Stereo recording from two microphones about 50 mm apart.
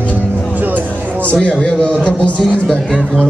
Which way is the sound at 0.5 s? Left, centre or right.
Right.